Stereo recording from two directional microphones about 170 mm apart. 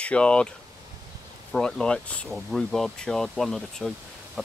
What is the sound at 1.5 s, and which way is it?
Speech, 5° left (ahead or behind).